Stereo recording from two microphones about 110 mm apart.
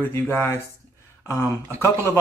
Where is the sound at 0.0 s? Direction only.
20° left (ahead or behind).